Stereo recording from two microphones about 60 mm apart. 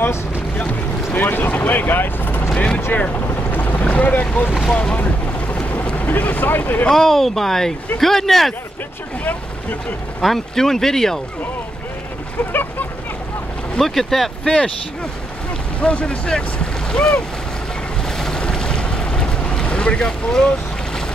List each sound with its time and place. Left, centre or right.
0.6 s speech: left
2.5 s speech: centre
3.5 s boat: left
3.8 s speech: left
4.5 s speech: centre
4.7 s boat: left
6.9 s speech: centre
9.2 s speech: left
10.2 s speech: centre
13.7 s speech: centre
14.4 s speech: centre
15.8 s speech: left
18.1 s boat: centre